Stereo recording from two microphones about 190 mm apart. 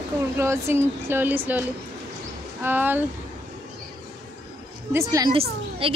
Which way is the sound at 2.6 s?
10° right (ahead or behind).